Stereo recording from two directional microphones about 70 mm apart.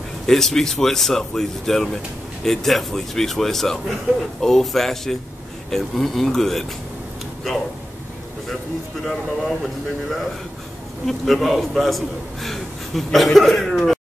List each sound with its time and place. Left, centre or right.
0.3 s a man's voice: centre
9.0 s a man's voice: centre
11.1 s a man's voice: centre